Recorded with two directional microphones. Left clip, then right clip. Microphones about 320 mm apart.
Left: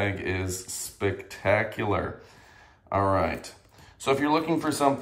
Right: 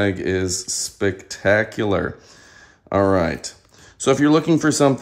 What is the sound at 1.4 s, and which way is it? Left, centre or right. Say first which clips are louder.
Speech: right 7 dB; right.